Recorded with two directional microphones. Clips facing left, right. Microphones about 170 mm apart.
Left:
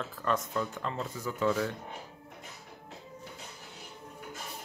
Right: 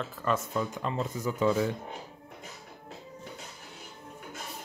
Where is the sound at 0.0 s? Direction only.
5° right (ahead or behind).